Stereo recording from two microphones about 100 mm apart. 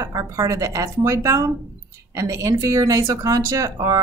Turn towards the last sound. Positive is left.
turn(degrees=-35)  # may be behind; listen again after turning